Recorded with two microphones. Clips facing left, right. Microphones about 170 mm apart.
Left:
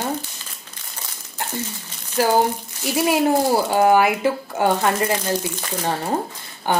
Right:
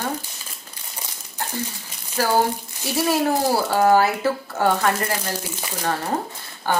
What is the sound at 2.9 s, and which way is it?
A woman's voice, 15° left (ahead or behind).